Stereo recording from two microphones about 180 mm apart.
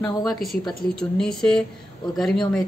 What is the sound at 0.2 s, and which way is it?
Speech, centre (ahead or behind).